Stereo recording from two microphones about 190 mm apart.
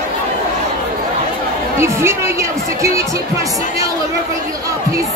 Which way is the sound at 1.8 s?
15° right (ahead or behind).